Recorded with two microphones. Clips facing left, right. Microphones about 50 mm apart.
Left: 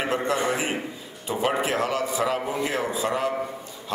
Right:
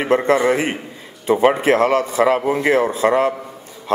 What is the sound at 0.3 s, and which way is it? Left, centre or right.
A man's voice, right.